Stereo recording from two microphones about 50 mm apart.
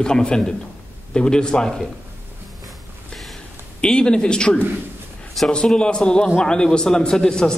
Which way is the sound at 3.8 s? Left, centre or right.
Centre.